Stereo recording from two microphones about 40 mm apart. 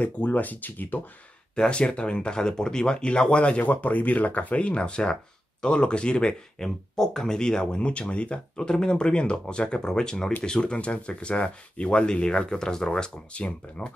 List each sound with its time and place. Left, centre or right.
0.0 s speech: left
1.5 s speech: left
8.6 s speech: centre